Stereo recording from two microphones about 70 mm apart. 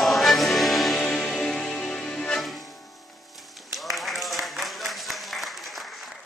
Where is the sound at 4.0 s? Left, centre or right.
Centre.